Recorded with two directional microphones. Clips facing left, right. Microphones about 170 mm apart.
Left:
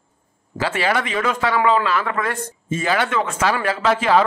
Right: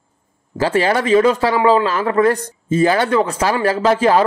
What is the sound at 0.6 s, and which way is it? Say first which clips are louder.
A man's voice: right 5 dB; 40° right (ahead or behind).